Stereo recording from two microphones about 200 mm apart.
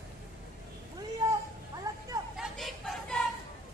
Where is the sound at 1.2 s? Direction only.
15° right (ahead or behind).